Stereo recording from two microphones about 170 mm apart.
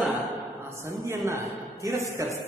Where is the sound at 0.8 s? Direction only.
15° right (ahead or behind).